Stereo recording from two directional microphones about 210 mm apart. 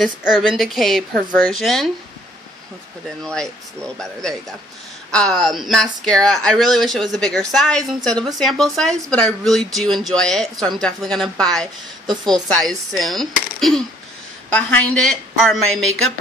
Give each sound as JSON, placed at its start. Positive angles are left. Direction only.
{"t": 0.0, "sound": "a woman's voice", "side_deg": 0}
{"t": 3.3, "sound": "a woman's voice", "side_deg": 5}
{"t": 12.1, "sound": "a woman's voice", "side_deg": -20}
{"t": 12.5, "sound": "a woman's voice", "side_deg": 0}